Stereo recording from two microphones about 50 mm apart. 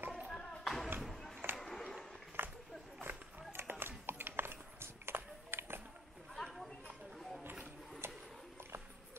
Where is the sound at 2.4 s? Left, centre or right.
Right.